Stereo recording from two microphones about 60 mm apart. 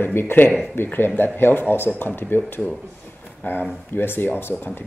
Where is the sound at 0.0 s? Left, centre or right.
Left.